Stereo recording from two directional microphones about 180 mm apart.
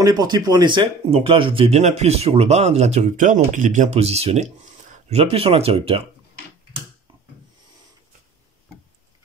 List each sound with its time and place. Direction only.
0.0 s speech: 25° right (ahead or behind); by 5.2 s 40° right (ahead or behind)
5.2 s speech: 30° right (ahead or behind)